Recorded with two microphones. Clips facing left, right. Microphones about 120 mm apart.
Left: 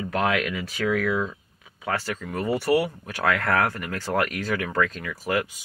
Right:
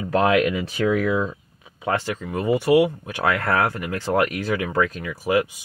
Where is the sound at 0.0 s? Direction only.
30° right (ahead or behind).